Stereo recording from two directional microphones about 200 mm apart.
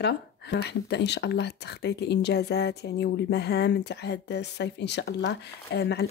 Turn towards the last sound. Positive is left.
turn(degrees=55)  # may be behind; listen again after turning